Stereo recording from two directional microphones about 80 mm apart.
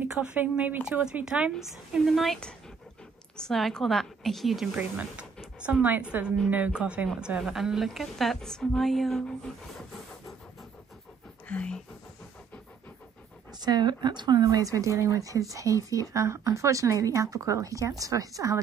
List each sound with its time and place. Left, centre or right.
0.2 s a woman's voice: centre
4.7 s a woman's voice: centre
11.4 s a sound: centre
13.6 s speech: right